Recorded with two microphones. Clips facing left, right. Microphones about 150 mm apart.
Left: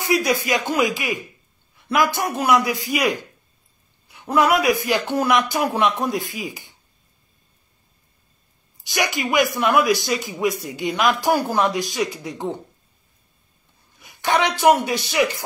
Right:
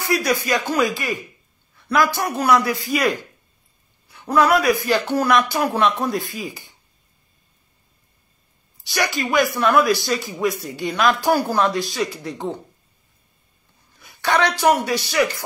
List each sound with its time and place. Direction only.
0.0 s a man's voice: 15° left (ahead or behind)
8.7 s speech: 20° left (ahead or behind)
14.0 s a sound: 15° left (ahead or behind)
14.9 s speech: 20° left (ahead or behind)